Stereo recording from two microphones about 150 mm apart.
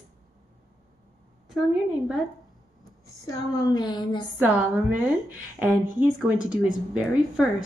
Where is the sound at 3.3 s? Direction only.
25° left (ahead or behind).